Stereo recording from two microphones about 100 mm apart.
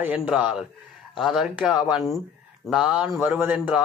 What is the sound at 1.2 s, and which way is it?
Speech, 5° right (ahead or behind).